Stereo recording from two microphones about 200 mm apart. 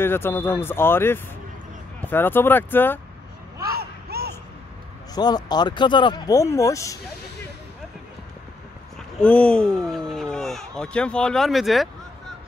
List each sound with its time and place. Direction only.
0.0 s speech: 10° left (ahead or behind)
3.7 s a sound: 50° right (ahead or behind)
5.1 s speech: 20° left (ahead or behind)
9.2 s speech: 5° left (ahead or behind)